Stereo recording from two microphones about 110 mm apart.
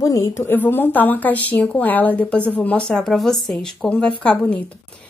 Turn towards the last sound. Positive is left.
turn(degrees=10)  # may be behind; listen again after turning